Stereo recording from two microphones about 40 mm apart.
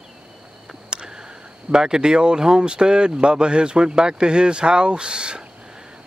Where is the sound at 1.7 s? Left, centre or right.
Centre.